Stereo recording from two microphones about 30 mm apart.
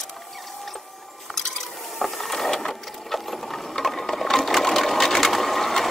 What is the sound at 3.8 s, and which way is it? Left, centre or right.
Sewing machine, centre.